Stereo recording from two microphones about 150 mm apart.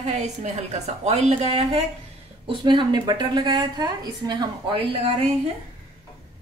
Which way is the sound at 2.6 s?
30° right (ahead or behind).